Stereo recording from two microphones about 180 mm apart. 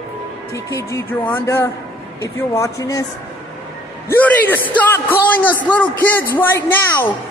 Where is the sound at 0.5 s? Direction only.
15° left (ahead or behind).